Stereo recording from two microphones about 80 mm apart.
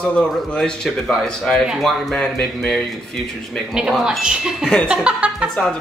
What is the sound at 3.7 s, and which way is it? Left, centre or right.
A woman's voice, centre.